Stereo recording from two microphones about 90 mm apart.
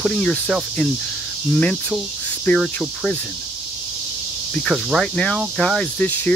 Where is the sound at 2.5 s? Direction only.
15° left (ahead or behind).